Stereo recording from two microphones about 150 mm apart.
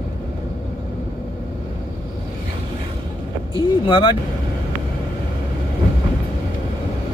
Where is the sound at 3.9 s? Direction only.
35° left (ahead or behind).